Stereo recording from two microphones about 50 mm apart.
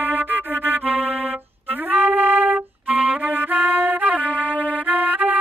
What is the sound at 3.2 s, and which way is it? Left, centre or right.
Music, right.